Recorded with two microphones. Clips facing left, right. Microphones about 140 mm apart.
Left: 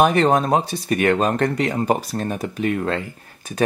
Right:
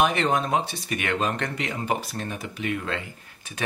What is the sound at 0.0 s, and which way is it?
Speech, 40° left (ahead or behind).